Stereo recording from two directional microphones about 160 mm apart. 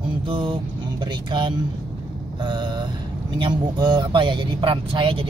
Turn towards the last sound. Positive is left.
turn(degrees=-35)  # may be behind; listen again after turning